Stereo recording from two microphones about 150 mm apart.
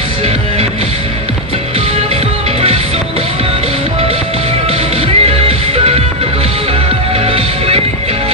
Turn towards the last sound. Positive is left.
turn(degrees=-40)  # may be behind; listen again after turning